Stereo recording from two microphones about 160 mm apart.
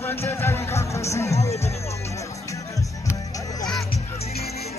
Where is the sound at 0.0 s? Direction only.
15° left (ahead or behind).